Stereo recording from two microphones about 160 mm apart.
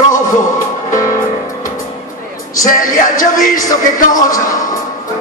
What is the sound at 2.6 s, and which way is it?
Music, 55° left (ahead or behind).